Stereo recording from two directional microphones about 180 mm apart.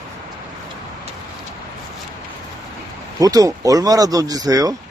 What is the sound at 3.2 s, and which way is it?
Speech, 20° right (ahead or behind).